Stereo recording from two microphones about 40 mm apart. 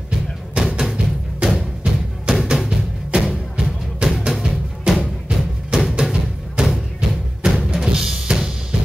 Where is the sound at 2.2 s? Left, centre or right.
Centre.